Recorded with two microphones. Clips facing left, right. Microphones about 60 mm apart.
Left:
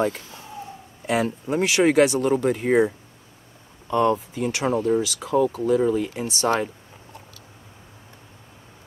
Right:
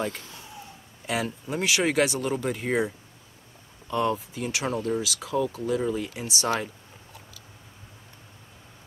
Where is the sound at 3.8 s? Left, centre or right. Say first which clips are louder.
Left 6 dB; centre.